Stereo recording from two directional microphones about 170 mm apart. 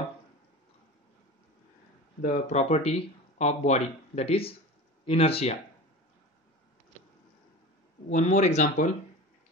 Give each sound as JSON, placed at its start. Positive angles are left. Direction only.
{"t": 2.2, "sound": "speech", "side_deg": 45}
{"t": 8.1, "sound": "speech", "side_deg": 45}